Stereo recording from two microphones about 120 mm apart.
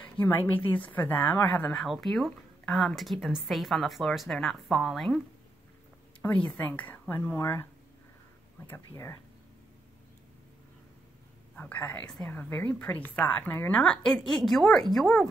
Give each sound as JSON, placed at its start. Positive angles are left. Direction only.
{"t": 0.2, "sound": "speech", "side_deg": 15}
{"t": 6.2, "sound": "speech", "side_deg": 10}
{"t": 8.6, "sound": "speech", "side_deg": 20}
{"t": 11.5, "sound": "a woman's voice", "side_deg": 15}